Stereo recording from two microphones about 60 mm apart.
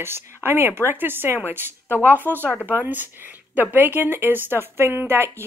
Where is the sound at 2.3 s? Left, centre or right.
Left.